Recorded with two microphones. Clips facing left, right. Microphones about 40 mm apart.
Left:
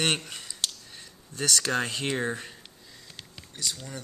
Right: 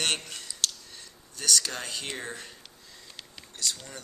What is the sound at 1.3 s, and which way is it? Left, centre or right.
Speech, left.